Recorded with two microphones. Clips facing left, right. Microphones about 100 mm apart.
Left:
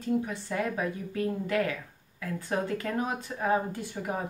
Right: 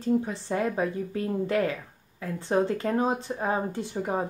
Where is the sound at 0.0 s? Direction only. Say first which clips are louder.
Right 3 dB; 30° right (ahead or behind).